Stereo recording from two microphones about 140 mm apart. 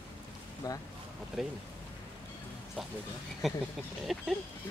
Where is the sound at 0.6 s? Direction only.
25° left (ahead or behind).